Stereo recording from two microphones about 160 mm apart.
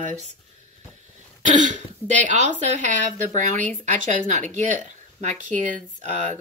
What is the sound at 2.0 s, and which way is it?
Speech, 45° right (ahead or behind).